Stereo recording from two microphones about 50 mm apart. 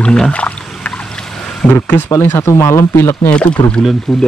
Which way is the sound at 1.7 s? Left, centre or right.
Left.